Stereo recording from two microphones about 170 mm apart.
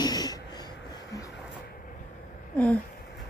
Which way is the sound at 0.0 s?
25° left (ahead or behind).